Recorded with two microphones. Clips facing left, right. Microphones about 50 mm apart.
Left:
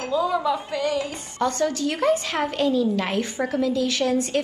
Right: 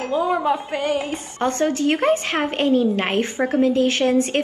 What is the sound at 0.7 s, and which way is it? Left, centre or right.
A woman's voice, right.